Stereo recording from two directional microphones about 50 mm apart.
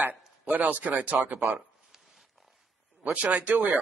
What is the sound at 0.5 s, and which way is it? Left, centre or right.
Speech, right.